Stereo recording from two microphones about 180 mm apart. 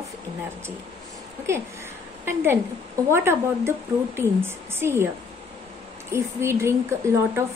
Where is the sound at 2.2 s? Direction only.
15° right (ahead or behind).